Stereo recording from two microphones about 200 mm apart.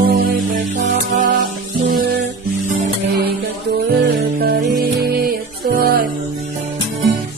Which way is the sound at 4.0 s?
55° right (ahead or behind).